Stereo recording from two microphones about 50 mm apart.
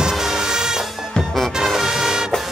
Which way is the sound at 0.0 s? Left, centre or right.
Centre.